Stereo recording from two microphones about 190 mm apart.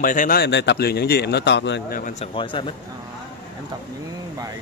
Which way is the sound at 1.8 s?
45° left (ahead or behind).